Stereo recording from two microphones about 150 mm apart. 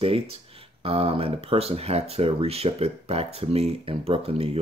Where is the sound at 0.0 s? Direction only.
40° right (ahead or behind).